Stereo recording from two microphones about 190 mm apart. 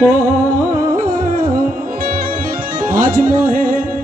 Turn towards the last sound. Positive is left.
turn(degrees=-45)  # may be behind; listen again after turning